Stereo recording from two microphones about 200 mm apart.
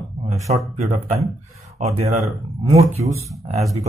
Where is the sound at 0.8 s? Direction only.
35° right (ahead or behind).